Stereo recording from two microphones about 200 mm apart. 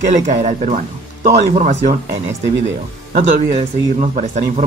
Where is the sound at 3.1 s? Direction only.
40° right (ahead or behind).